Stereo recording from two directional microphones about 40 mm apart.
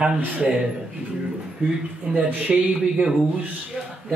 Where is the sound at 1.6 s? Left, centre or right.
Right.